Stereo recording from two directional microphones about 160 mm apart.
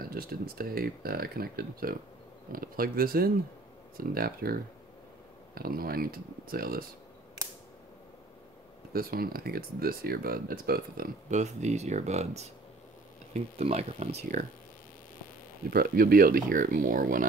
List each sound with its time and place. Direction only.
0.0 s speech: 65° right (ahead or behind)
8.9 s speech: 70° right (ahead or behind)
11.2 s speech: 45° right (ahead or behind)
15.7 s speech: 70° right (ahead or behind)